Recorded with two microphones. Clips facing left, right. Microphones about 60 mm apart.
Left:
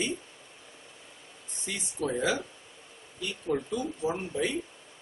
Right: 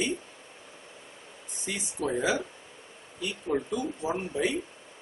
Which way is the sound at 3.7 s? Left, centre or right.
Centre.